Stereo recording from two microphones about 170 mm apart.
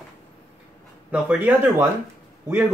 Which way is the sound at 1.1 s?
10° right (ahead or behind).